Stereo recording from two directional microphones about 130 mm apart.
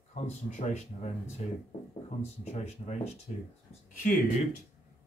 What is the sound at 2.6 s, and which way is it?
Speech, 55° left (ahead or behind).